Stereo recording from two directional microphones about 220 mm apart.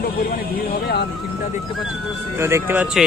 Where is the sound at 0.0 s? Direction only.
40° left (ahead or behind).